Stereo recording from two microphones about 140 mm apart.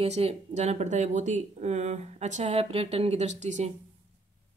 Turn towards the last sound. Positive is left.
turn(degrees=-55)  # may be behind; listen again after turning